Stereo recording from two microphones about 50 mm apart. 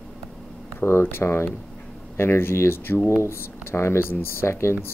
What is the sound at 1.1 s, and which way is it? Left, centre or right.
Speech, left.